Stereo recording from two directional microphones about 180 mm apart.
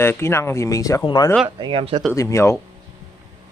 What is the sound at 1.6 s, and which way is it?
Speech, 30° right (ahead or behind).